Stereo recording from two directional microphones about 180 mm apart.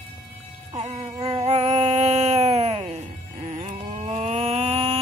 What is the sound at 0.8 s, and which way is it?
Music, 40° right (ahead or behind).